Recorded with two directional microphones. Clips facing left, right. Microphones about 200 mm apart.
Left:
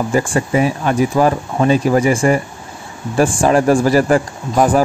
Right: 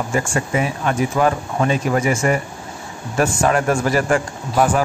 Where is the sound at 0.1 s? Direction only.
35° left (ahead or behind).